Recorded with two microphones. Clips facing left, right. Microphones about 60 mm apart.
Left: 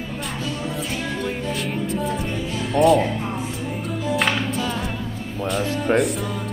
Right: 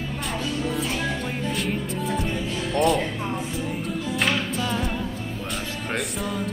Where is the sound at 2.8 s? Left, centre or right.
Centre.